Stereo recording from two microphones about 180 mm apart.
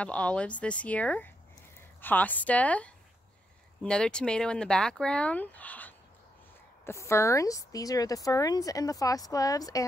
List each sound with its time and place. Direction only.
0.0 s speech: 5° left (ahead or behind)